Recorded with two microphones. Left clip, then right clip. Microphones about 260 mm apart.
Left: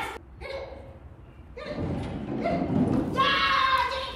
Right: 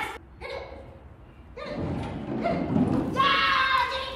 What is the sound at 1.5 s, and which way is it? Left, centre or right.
Thump, right.